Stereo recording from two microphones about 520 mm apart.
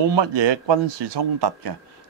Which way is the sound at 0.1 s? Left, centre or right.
Right.